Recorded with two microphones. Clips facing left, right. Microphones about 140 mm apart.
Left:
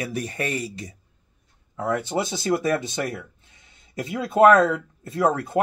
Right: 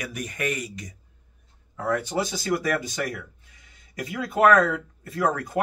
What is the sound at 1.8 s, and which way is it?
Speech, 20° left (ahead or behind).